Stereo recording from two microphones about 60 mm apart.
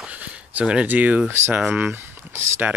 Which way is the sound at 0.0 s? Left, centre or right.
Right.